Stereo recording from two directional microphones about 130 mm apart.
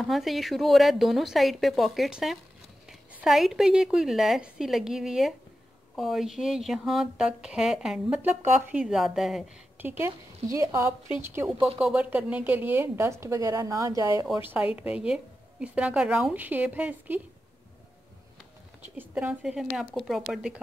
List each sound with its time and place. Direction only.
0.0 s speech: centre (ahead or behind)
9.8 s a woman's voice: 15° right (ahead or behind)
14.8 s a woman's voice: 10° right (ahead or behind)
18.9 s speech: 10° right (ahead or behind)